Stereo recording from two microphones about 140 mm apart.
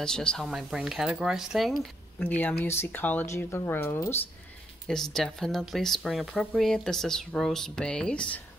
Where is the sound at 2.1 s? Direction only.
10° left (ahead or behind).